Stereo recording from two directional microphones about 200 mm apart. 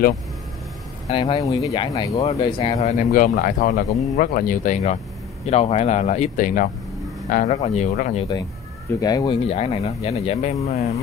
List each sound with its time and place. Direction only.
1.0 s speech: 25° left (ahead or behind)
2.2 s speech: 30° left (ahead or behind)
9.0 s speech: 20° left (ahead or behind)